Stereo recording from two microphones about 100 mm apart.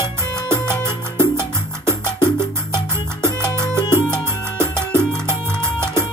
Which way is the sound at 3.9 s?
25° right (ahead or behind).